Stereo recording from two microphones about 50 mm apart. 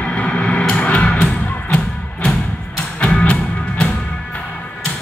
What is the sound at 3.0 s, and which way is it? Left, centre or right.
Music, left.